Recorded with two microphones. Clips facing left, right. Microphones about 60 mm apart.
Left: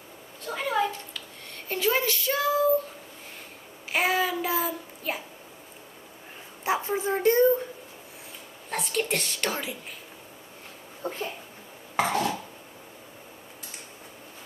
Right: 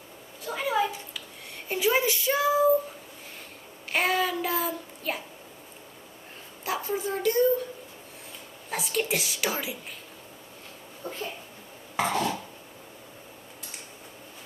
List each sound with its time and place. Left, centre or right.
0.4 s a sound: centre
1.7 s speech: centre
3.9 s child singing: centre
6.6 s a woman's voice: left
8.6 s a woman's voice: centre
11.0 s a sound: left
12.0 s dishes: centre